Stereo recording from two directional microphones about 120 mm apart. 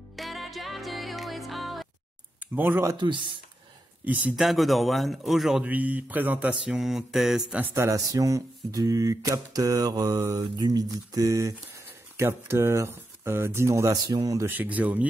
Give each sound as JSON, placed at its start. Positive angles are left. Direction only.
{"t": 0.1, "sound": "music", "side_deg": 0}
{"t": 2.5, "sound": "speech", "side_deg": -15}
{"t": 3.0, "sound": "speech", "side_deg": -40}
{"t": 4.0, "sound": "speech", "side_deg": -15}
{"t": 4.4, "sound": "speech", "side_deg": 0}
{"t": 5.7, "sound": "speech", "side_deg": -15}
{"t": 7.7, "sound": "speech", "side_deg": -25}
{"t": 14.5, "sound": "speech", "side_deg": -15}